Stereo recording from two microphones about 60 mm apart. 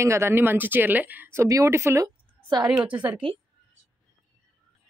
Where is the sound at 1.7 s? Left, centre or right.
Right.